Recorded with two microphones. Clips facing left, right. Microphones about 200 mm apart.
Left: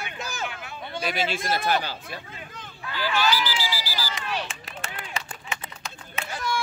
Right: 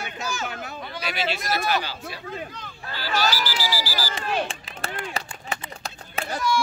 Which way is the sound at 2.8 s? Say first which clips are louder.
Left 1 dB; 40° right (ahead or behind).